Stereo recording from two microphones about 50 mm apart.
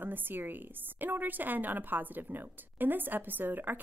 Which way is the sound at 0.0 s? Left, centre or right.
Right.